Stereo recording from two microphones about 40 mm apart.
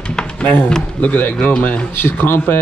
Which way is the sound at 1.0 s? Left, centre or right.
Left.